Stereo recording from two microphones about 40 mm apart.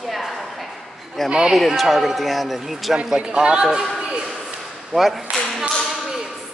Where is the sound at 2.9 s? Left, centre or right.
Centre.